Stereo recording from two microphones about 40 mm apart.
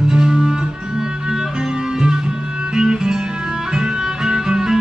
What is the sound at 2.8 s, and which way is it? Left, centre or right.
Music, centre.